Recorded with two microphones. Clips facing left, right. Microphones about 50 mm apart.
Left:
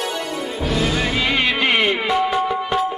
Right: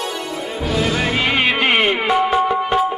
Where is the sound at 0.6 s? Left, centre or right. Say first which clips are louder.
Right 2 dB; centre.